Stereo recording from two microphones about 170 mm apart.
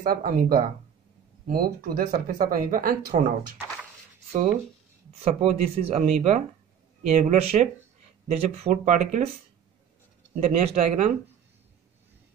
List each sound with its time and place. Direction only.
0.0 s speech: 55° right (ahead or behind)
5.2 s speech: 40° right (ahead or behind)
10.3 s speech: 40° right (ahead or behind)